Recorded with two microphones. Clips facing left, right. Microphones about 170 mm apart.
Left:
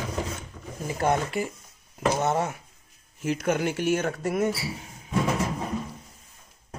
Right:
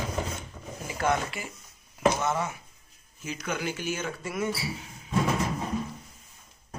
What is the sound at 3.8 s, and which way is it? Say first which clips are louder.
Speech: left 8 dB; 65° left (ahead or behind).